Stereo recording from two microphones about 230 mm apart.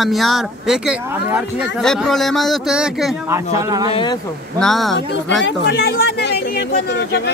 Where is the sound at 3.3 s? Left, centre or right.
Centre.